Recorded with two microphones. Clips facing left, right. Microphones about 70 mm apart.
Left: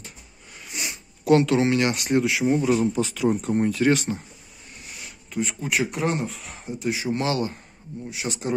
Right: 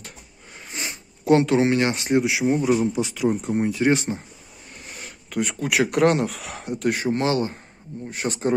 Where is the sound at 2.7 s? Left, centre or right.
Centre; by 4.2 s right.